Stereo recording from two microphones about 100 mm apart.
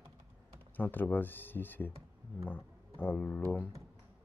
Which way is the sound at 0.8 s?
20° left (ahead or behind).